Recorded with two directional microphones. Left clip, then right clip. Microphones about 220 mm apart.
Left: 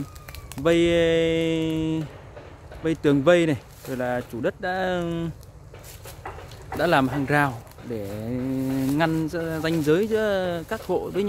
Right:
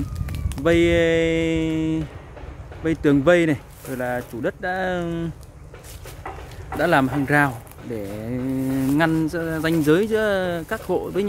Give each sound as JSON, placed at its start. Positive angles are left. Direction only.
{"t": 0.3, "sound": "speech", "side_deg": 15}
{"t": 6.8, "sound": "speech", "side_deg": 15}